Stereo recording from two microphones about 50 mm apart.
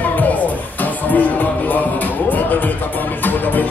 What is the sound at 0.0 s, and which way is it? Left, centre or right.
Music, left.